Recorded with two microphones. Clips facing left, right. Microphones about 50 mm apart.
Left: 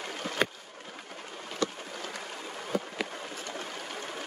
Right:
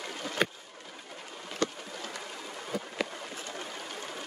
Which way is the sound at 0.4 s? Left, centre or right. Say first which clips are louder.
Even; centre.